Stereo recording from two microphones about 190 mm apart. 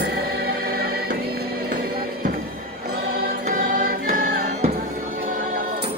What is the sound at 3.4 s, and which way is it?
Music, 45° right (ahead or behind).